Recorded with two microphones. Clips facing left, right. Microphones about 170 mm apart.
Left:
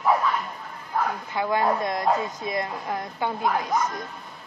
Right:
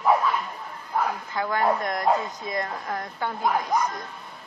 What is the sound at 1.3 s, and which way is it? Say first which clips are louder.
Speech: left 1 dB; 15° left (ahead or behind).